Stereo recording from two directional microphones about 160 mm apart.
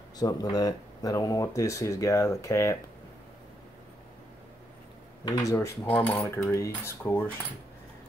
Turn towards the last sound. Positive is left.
turn(degrees=15)  # may be behind; listen again after turning